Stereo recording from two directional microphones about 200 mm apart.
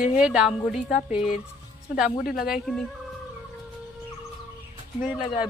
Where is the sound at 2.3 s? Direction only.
Centre (ahead or behind).